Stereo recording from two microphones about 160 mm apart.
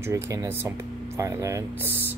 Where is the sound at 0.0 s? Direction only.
20° right (ahead or behind).